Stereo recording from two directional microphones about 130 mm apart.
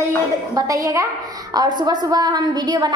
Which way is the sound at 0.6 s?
25° right (ahead or behind).